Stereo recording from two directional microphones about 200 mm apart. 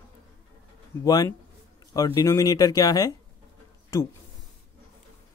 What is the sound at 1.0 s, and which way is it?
Speech, 20° left (ahead or behind).